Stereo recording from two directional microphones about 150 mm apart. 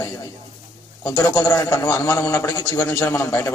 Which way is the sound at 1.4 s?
20° left (ahead or behind).